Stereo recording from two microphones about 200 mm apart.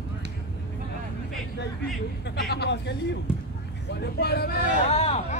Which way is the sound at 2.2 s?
55° left (ahead or behind).